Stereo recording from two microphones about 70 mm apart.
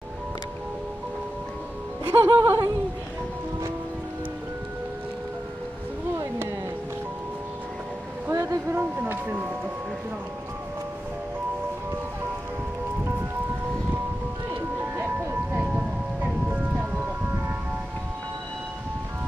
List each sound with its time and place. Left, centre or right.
2.0 s music: right
8.3 s a sound: right
14.8 s music: right